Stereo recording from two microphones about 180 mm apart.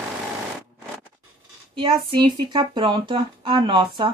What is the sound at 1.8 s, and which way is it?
Speech, 25° right (ahead or behind).